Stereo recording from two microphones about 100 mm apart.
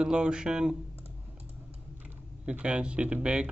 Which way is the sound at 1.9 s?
15° right (ahead or behind).